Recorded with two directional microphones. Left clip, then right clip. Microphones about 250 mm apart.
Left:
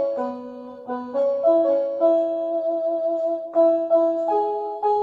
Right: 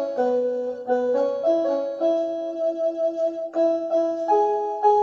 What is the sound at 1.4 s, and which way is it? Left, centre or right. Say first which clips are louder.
Music: left 3 dB; left.